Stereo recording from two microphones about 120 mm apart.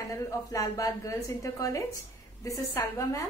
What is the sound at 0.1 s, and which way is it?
A woman's voice, 30° left (ahead or behind).